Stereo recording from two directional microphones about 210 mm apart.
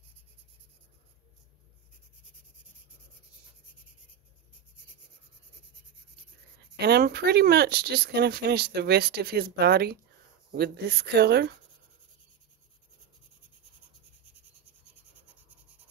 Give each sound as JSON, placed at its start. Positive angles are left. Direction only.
{"t": 6.8, "sound": "speech", "side_deg": -50}